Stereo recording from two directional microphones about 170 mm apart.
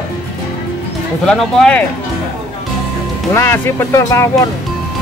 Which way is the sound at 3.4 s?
15° left (ahead or behind).